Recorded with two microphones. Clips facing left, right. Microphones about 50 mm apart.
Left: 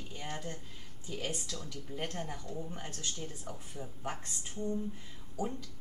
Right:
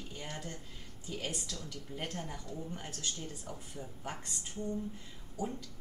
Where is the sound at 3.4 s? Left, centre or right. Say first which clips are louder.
Left 1 dB; left.